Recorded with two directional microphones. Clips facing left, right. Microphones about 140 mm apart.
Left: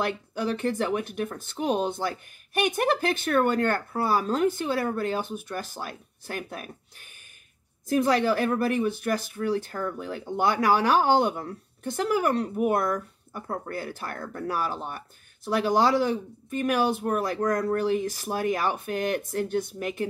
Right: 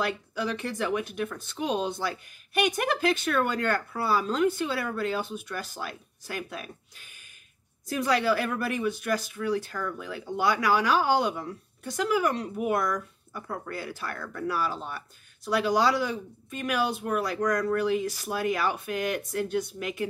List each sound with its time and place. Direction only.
0.3 s speech: 45° left (ahead or behind)
8.1 s speech: 45° left (ahead or behind)
10.3 s speech: 50° left (ahead or behind)
17.4 s speech: 30° left (ahead or behind)
17.7 s speech: 40° left (ahead or behind)